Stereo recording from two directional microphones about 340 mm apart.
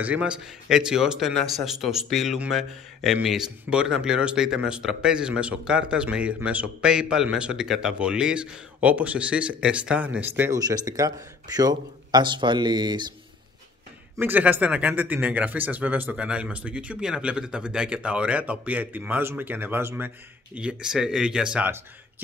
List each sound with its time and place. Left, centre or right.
0.0 s speech: centre
14.1 s speech: centre